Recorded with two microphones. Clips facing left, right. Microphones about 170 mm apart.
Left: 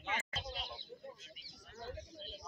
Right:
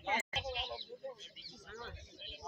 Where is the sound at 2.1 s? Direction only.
40° left (ahead or behind).